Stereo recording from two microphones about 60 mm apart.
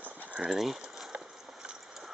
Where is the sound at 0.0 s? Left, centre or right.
Right.